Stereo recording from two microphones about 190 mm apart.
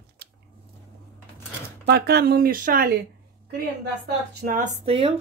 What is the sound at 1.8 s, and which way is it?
Speech, 60° right (ahead or behind).